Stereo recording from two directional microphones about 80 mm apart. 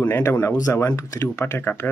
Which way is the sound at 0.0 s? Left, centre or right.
Left.